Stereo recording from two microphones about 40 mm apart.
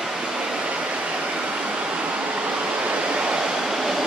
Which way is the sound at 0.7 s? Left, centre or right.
Right.